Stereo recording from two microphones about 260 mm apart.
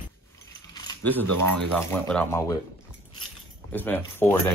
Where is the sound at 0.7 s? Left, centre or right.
Centre.